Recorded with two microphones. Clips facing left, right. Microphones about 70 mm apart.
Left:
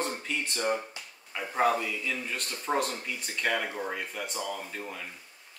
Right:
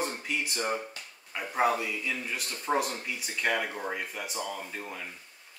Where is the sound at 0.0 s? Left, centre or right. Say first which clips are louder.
Even; centre.